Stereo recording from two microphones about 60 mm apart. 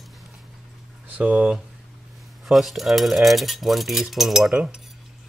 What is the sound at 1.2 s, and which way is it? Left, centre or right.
Speech, right.